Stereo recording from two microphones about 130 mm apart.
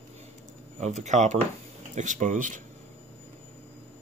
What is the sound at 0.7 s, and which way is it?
Speech, 60° right (ahead or behind).